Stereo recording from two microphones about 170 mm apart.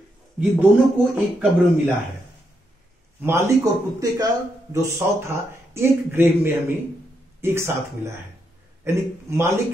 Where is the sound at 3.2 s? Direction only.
15° right (ahead or behind).